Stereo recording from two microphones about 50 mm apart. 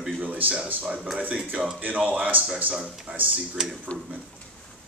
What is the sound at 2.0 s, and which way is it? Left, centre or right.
Speech, right.